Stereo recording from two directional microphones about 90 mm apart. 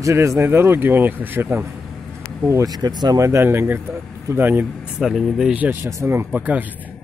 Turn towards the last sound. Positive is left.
turn(degrees=-30)  # may be behind; listen again after turning